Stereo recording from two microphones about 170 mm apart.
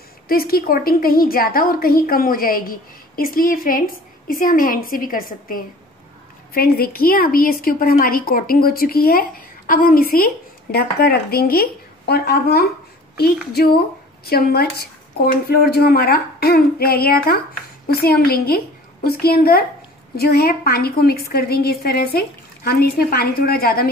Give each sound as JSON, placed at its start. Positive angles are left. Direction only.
{"t": 0.3, "sound": "a woman's voice", "side_deg": 60}